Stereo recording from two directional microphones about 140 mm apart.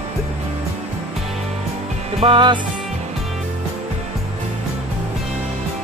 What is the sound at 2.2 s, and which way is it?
Music, 35° right (ahead or behind).